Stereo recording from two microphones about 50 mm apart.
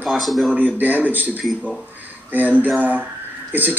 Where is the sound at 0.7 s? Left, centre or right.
Right.